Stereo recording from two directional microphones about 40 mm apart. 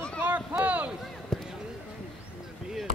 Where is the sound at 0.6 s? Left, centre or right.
Right.